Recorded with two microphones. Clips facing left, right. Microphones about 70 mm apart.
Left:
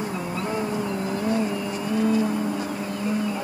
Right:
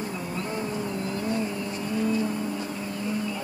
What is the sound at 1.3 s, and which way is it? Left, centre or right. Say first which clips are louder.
Vehicle: left 4 dB; centre.